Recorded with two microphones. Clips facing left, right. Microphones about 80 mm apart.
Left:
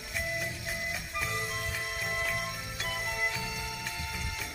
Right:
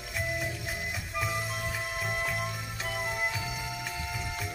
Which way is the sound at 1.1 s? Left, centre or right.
Centre.